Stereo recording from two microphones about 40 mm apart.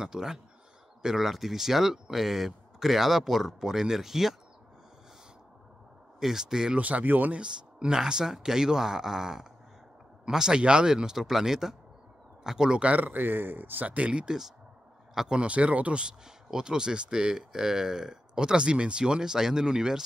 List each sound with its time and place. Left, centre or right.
0.0 s speech: centre
6.1 s speech: centre
6.8 s speech: right
7.3 s speech: right
12.7 s speech: right
13.0 s speech: right
13.8 s speech: right
14.2 s speech: centre
15.3 s speech: right
16.4 s speech: centre